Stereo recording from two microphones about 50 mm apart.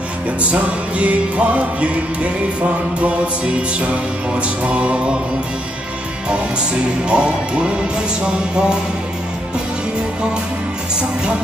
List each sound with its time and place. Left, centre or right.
0.4 s music: right
4.4 s music: right
7.1 s music: centre